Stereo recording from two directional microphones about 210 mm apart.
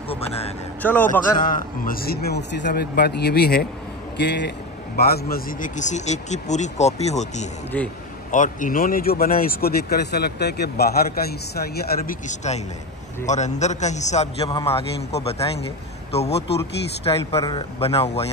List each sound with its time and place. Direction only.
0.8 s a man's voice: 5° left (ahead or behind)
1.3 s a man's voice: 40° left (ahead or behind)
7.7 s a man's voice: 10° left (ahead or behind)
8.3 s a man's voice: 40° left (ahead or behind)